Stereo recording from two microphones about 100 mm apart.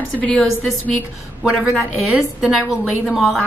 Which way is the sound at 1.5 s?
5° right (ahead or behind).